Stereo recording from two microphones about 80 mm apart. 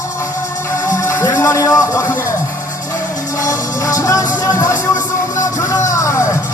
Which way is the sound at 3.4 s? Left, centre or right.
Left.